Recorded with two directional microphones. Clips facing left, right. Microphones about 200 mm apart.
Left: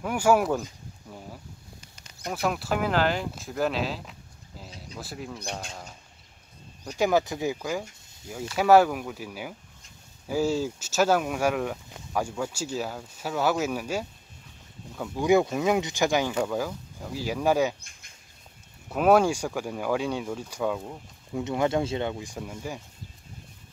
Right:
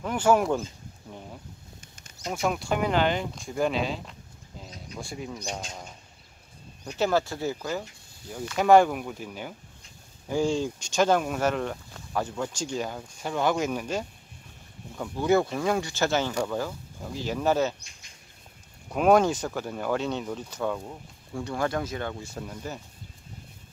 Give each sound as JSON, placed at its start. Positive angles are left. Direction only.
{"t": 0.0, "sound": "speech", "side_deg": 10}
{"t": 1.8, "sound": "a sound", "side_deg": -50}
{"t": 2.3, "sound": "speech", "side_deg": 5}
{"t": 7.0, "sound": "speech", "side_deg": 15}
{"t": 15.1, "sound": "speech", "side_deg": 15}
{"t": 17.7, "sound": "speech", "side_deg": 55}
{"t": 18.9, "sound": "speech", "side_deg": 5}
{"t": 21.4, "sound": "speech", "side_deg": 20}